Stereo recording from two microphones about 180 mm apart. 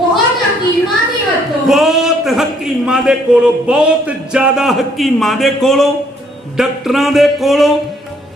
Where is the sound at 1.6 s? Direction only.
Centre (ahead or behind).